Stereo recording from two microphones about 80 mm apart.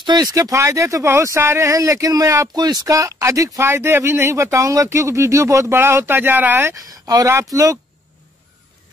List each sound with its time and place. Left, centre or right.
0.0 s speech: right
2.5 s speech: right
6.7 s speech: right